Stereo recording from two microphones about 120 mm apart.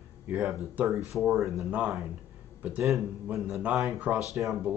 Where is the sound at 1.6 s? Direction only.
15° right (ahead or behind).